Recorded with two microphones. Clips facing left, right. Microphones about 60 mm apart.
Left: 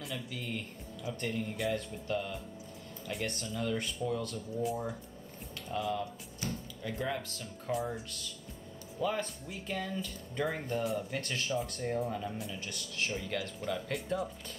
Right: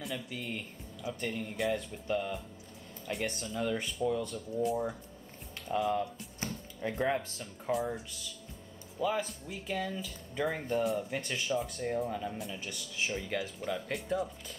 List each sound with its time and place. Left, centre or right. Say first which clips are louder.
0.0 s speech: right 1 dB; centre
5.9 s speech: right 3 dB; right
7.7 s speech: right 2 dB; centre